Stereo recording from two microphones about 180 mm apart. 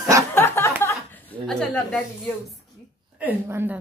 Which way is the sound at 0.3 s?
15° left (ahead or behind).